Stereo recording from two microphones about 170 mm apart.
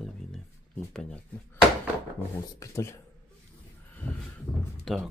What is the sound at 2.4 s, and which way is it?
Speech, 15° left (ahead or behind).